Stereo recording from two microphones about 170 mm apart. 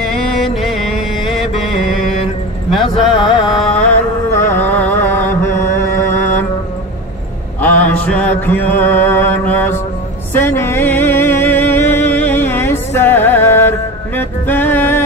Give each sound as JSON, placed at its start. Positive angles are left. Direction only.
{"t": 0.0, "sound": "music", "side_deg": 0}
{"t": 2.7, "sound": "speech", "side_deg": 0}
{"t": 3.7, "sound": "music", "side_deg": 10}
{"t": 7.6, "sound": "mantra", "side_deg": 10}
{"t": 10.3, "sound": "music", "side_deg": 15}